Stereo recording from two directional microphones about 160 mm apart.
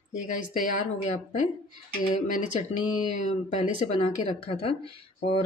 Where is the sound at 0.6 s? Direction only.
50° left (ahead or behind).